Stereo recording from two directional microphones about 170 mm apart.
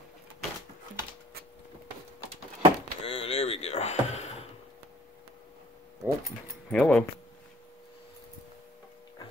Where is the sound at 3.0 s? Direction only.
35° left (ahead or behind).